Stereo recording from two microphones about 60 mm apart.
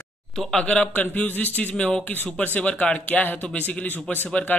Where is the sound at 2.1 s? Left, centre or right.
Left.